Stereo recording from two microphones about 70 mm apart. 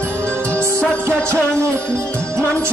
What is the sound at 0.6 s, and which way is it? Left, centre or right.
Music, right.